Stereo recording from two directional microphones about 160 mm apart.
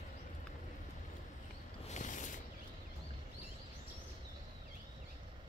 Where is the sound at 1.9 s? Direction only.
50° left (ahead or behind).